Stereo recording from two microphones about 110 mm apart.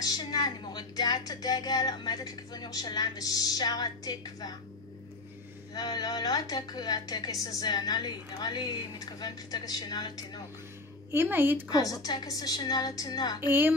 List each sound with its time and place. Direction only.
0.0 s speech: 40° left (ahead or behind)
5.8 s speech: 40° left (ahead or behind)
11.1 s speech: 20° right (ahead or behind)
11.7 s speech: 35° left (ahead or behind)
13.5 s speech: 20° right (ahead or behind)